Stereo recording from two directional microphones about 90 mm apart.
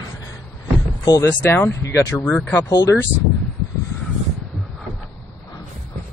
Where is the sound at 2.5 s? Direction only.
35° left (ahead or behind).